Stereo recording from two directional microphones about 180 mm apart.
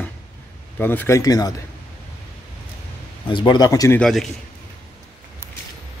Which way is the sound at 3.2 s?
25° left (ahead or behind).